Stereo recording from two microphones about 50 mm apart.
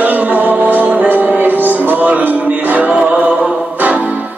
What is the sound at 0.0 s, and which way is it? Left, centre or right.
Music, right.